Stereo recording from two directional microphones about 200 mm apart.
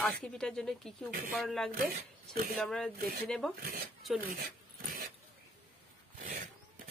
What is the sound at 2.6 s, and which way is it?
Speech, 5° left (ahead or behind).